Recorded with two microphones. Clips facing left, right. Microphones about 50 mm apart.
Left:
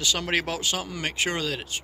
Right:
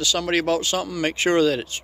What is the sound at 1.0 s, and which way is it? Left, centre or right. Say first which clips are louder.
Speech: right 11 dB; centre.